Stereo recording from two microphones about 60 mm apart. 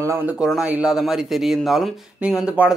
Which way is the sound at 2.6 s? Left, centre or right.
Right.